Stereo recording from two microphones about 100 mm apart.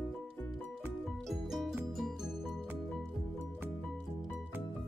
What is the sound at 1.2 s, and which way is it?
Music, centre (ahead or behind).